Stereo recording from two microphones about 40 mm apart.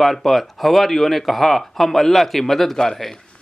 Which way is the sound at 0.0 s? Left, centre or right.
Centre.